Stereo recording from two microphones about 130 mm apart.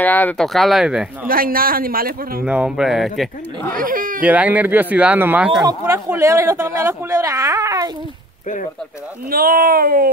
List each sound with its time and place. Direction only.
0.0 s speech: 15° left (ahead or behind)
0.5 s speech: centre (ahead or behind)
1.2 s a man's voice: 90° right
2.4 s speech: 10° right (ahead or behind)
3.7 s speech: 90° right
4.2 s speech: 10° right (ahead or behind); by 7.9 s 25° right (ahead or behind)
9.4 s a man's voice: 90° right